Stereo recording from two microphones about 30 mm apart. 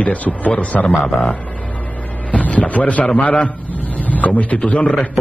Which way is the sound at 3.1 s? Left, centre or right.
Left.